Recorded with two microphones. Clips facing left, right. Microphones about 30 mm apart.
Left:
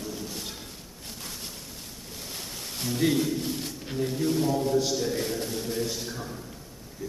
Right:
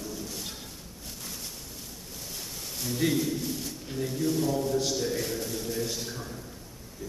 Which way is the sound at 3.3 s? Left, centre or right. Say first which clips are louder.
Left 2 dB; left.